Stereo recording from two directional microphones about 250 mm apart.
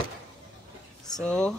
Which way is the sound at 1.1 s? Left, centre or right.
Centre.